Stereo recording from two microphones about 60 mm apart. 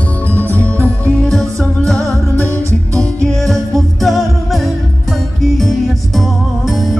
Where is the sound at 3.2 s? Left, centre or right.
Centre.